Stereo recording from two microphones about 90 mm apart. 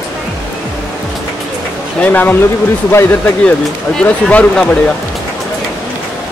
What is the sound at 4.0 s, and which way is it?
Speech, 15° left (ahead or behind).